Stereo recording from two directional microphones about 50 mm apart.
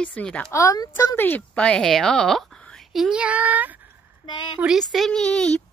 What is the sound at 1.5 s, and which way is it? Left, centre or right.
Speech, left.